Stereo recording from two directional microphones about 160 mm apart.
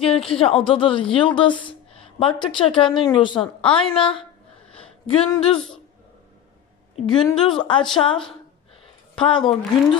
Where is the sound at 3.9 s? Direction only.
35° left (ahead or behind).